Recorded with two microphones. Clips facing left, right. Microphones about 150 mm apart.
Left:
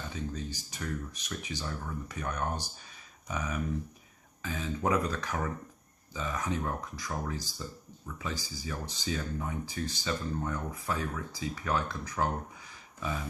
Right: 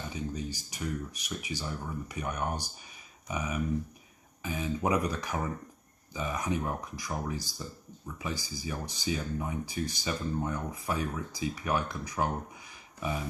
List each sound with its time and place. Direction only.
0.1 s speech: 15° right (ahead or behind)